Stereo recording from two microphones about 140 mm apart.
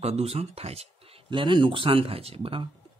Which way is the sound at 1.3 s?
35° right (ahead or behind).